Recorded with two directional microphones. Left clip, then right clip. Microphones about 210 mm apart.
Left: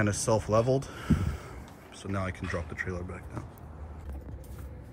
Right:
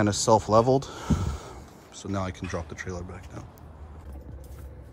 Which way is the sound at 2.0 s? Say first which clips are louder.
Right 3 dB; 15° right (ahead or behind).